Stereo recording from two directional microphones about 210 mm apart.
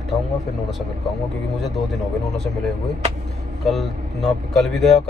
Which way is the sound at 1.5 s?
Centre (ahead or behind).